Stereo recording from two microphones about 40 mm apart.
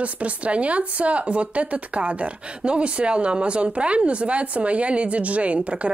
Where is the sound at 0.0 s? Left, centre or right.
Right.